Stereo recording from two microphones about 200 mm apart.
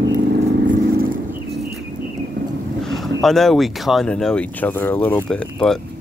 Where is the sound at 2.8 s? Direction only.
Centre (ahead or behind).